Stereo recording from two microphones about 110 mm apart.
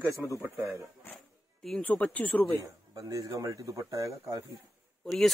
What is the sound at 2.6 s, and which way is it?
Speech, 30° right (ahead or behind).